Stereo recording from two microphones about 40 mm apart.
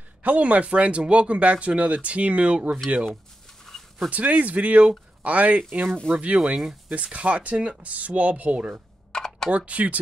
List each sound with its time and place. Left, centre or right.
0.2 s speech: right
3.6 s dog: centre
4.1 s speech: right
9.1 s computer keyboard: centre
9.5 s speech: right